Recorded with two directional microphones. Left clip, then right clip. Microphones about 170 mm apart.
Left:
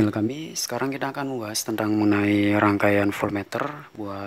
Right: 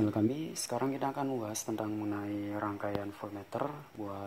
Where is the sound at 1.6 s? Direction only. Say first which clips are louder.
Left 13 dB; 30° left (ahead or behind); by 3.5 s 50° left (ahead or behind).